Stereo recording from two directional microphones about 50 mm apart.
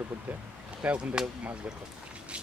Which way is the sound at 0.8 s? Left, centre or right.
Right.